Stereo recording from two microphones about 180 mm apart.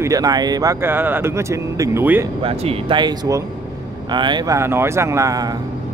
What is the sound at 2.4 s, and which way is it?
Speech, 30° right (ahead or behind).